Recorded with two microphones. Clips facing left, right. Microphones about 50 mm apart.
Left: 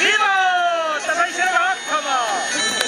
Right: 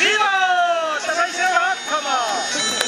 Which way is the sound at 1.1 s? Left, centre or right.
Left.